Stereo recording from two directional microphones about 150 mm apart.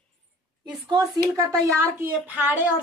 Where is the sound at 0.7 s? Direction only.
30° right (ahead or behind).